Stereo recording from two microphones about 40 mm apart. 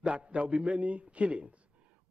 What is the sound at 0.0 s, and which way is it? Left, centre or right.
A man's voice, right.